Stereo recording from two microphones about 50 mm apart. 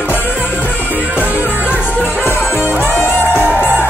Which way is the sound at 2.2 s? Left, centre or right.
Left.